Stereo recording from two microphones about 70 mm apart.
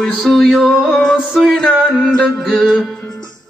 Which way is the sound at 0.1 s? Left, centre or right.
Centre.